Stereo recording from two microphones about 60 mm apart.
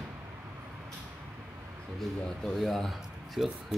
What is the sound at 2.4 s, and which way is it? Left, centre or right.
Speech, centre.